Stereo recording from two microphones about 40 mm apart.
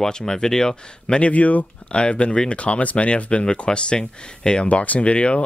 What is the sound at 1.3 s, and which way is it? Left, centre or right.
Speech, left.